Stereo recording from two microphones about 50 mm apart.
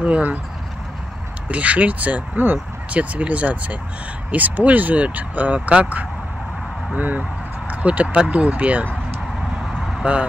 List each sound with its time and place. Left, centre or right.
0.0 s speech: right
1.5 s speech: right
10.0 s speech: right